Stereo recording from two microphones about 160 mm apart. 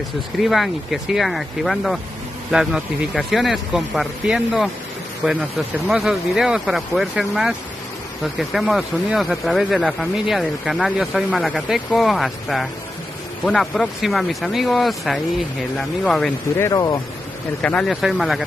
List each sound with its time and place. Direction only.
0.4 s speech: centre (ahead or behind)
16.5 s speech: 20° left (ahead or behind)
17.6 s speech: 5° left (ahead or behind)